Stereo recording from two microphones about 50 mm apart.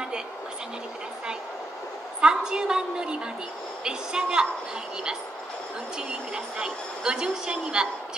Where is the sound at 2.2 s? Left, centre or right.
Centre.